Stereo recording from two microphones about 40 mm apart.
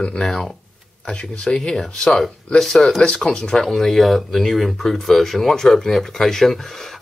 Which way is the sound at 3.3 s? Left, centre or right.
Centre.